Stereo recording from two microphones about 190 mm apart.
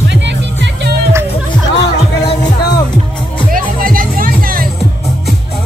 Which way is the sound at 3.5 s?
45° right (ahead or behind).